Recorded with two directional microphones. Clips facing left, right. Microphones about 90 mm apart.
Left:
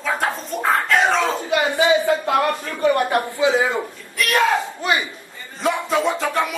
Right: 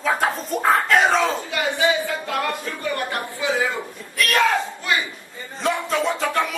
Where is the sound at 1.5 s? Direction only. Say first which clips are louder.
Left 8 dB; 20° left (ahead or behind).